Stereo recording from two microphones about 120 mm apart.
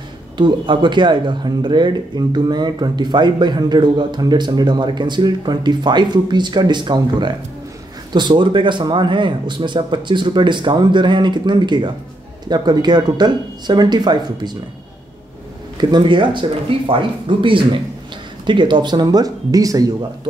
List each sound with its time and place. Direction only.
0.4 s speech: 40° right (ahead or behind)
15.8 s speech: 40° right (ahead or behind)